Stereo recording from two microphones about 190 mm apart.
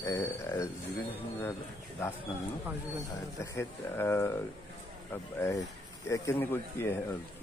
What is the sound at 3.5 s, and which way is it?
Speech, 15° left (ahead or behind).